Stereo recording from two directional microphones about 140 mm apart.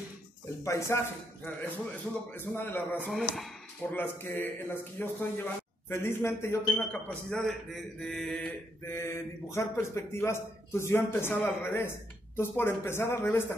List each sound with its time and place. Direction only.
0.7 s speech: 20° left (ahead or behind)
3.1 s speech: centre (ahead or behind)
3.9 s speech: 15° left (ahead or behind)
8.8 s speech: 20° left (ahead or behind)